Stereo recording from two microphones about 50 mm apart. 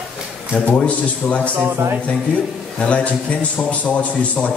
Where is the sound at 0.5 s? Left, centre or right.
Left.